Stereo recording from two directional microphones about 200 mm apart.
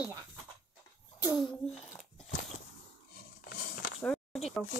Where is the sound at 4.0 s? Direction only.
Centre (ahead or behind).